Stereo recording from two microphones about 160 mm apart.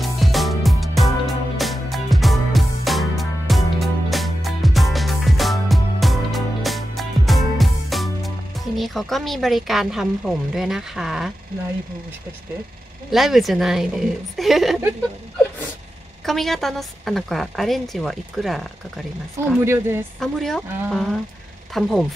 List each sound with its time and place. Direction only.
0.0 s music: centre (ahead or behind)
8.7 s speech: centre (ahead or behind)
13.1 s speech: centre (ahead or behind)
16.3 s speech: centre (ahead or behind)
19.6 s a woman's voice: 15° right (ahead or behind)
20.2 s speech: centre (ahead or behind)